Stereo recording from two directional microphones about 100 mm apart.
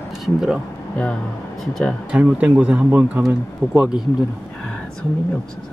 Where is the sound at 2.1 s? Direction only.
10° right (ahead or behind).